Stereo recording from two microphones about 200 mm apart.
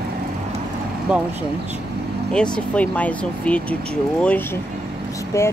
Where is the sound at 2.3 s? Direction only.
5° left (ahead or behind).